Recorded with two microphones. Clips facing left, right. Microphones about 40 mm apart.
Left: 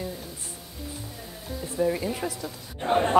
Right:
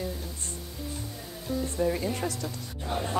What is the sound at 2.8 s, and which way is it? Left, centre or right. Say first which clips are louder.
Speech: left 9 dB; left.